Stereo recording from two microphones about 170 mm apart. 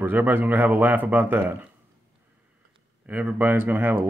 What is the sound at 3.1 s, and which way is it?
Speech, 10° right (ahead or behind).